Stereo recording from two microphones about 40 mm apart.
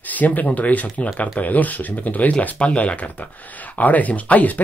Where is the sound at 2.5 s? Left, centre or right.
Left.